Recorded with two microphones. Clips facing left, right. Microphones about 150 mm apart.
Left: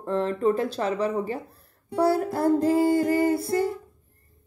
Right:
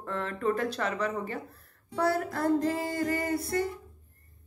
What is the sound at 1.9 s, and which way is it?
Music, 30° left (ahead or behind).